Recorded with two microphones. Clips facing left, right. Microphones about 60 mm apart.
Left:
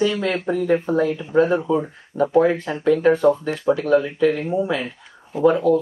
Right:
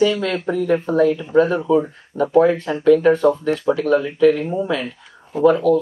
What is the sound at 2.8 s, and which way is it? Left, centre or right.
Speech, centre.